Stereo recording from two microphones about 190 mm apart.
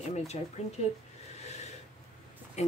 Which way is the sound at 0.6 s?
35° left (ahead or behind).